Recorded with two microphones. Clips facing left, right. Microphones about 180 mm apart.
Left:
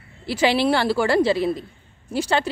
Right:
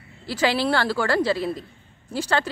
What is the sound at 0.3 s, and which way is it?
Speech, 20° left (ahead or behind).